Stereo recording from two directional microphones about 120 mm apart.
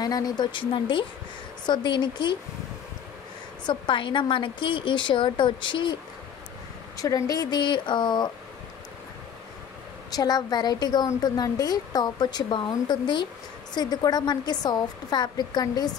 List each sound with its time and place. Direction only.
0.0 s speech: 35° left (ahead or behind)
3.6 s a woman's voice: 45° left (ahead or behind)
7.0 s speech: 30° left (ahead or behind)
10.1 s speech: 35° left (ahead or behind)